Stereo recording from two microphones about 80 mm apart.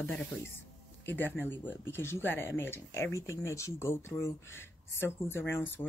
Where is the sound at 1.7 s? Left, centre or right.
Left.